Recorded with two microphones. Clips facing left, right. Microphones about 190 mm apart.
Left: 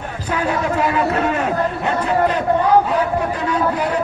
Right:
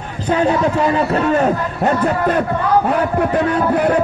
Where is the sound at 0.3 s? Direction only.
30° right (ahead or behind).